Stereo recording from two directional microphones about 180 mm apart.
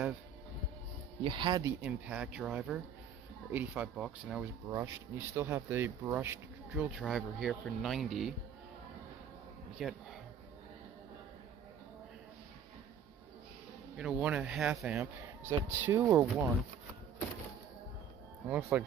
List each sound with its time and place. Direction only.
1.2 s speech: 25° right (ahead or behind)
1.9 s speech: 5° right (ahead or behind)
4.6 s speech: 15° right (ahead or behind); by 8.4 s centre (ahead or behind)
9.8 s speech: centre (ahead or behind)
13.9 s speech: 5° right (ahead or behind)
18.5 s speech: 10° right (ahead or behind)